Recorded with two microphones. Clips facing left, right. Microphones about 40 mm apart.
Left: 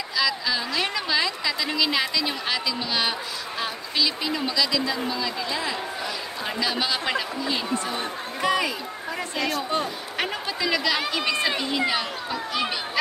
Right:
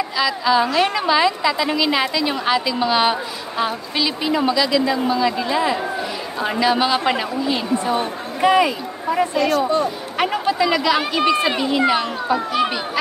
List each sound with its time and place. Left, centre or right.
0.2 s a woman's voice: centre
10.1 s a child's voice: centre
11.0 s a woman's voice: right
11.6 s a child's voice: centre